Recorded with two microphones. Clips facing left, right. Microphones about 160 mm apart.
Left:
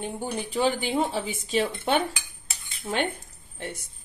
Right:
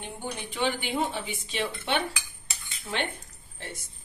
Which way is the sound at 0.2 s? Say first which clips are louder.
Left 4 dB; 40° left (ahead or behind).